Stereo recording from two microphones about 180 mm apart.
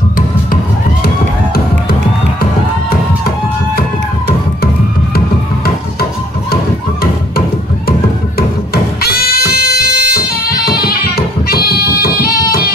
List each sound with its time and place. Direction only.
6.5 s music: 55° left (ahead or behind)
9.0 s music: 55° left (ahead or behind)